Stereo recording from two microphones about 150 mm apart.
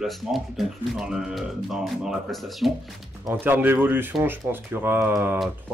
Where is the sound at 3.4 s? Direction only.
15° right (ahead or behind).